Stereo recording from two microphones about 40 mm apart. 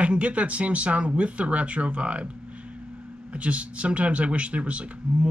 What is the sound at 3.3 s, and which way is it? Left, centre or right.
Speech, right.